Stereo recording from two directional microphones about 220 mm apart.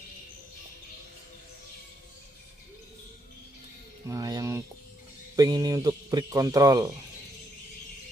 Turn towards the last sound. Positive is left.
turn(degrees=-15)  # may be behind; listen again after turning